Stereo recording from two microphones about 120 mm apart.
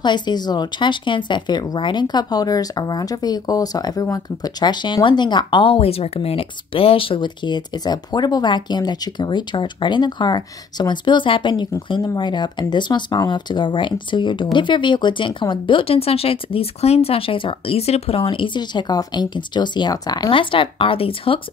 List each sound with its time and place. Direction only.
0.0 s speech: 40° left (ahead or behind)